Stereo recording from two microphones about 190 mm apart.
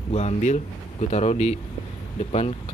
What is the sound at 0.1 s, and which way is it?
Speech, 35° left (ahead or behind).